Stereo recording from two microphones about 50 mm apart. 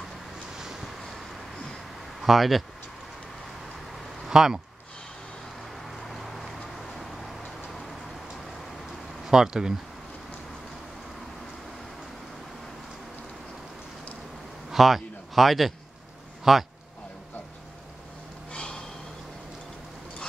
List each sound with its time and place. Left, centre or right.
0.6 s vehicle: centre
2.2 s speech: centre
4.3 s speech: centre
5.9 s a sound: centre
7.0 s vehicle: centre
9.2 s speech: centre
14.7 s a man's voice: centre
18.5 s snort: centre